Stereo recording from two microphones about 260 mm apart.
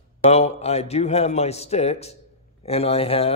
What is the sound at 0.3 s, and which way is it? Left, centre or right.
A man's voice, left.